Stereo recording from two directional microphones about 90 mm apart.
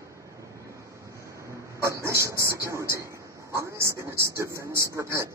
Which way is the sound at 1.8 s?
30° right (ahead or behind).